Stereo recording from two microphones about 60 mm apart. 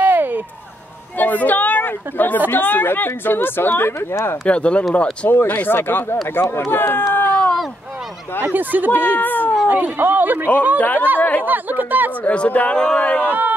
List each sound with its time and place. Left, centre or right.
0.0 s a sound: right
1.1 s a sound: left
2.5 s speech: left
4.5 s speech: centre
5.3 s speech: left
7.2 s a sound: centre
8.4 s speech: right
9.0 s speech: left
9.9 s speech: right
10.8 s speech: left
11.4 s speech: right
12.3 s speech: left
13.2 s speech: right